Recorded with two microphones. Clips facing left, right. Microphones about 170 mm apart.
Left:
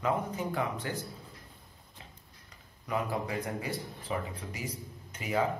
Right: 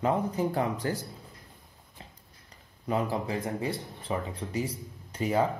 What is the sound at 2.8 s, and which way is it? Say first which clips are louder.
Speech: right 4 dB; 30° right (ahead or behind).